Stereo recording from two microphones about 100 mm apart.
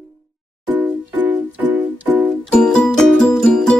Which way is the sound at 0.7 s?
15° right (ahead or behind).